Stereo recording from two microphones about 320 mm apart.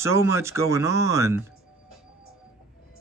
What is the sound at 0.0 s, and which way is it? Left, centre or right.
Speech, centre.